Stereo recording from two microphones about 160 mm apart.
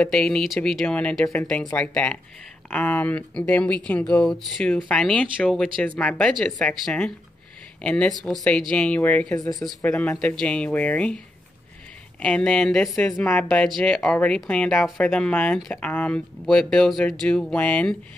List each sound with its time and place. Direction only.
0.0 s speech: 5° left (ahead or behind)
9.4 s speech: 20° left (ahead or behind)
9.9 s speech: 5° left (ahead or behind)
12.2 s speech: 5° left (ahead or behind)